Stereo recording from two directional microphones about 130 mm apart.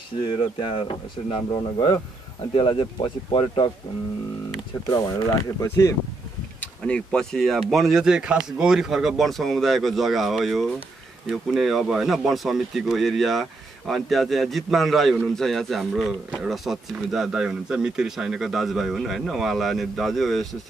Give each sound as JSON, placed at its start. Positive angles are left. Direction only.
{"t": 1.5, "sound": "speech", "side_deg": 35}
{"t": 5.6, "sound": "speech", "side_deg": 25}
{"t": 6.6, "sound": "speech", "side_deg": 10}